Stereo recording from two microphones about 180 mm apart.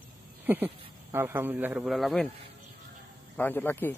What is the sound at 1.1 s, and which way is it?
A man's voice, 10° right (ahead or behind).